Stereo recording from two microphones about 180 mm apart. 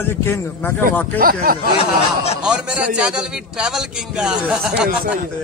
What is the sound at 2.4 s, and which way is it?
A man's voice, 5° right (ahead or behind).